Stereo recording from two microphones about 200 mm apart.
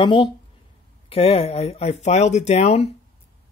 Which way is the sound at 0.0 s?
25° left (ahead or behind).